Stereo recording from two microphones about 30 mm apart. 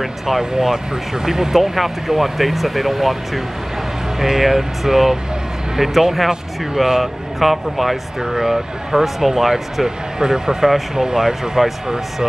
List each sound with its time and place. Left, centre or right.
0.4 s speech: centre
4.2 s speech: centre
7.0 s speech: centre
8.2 s speech: centre
9.8 s speech: right